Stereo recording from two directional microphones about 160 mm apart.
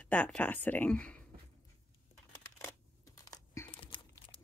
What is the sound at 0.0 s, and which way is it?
Speech, 10° left (ahead or behind).